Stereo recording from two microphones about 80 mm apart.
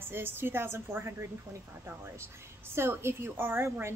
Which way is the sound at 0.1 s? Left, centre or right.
Right.